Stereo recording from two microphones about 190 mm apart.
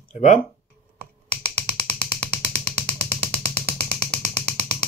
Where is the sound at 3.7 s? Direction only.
5° left (ahead or behind).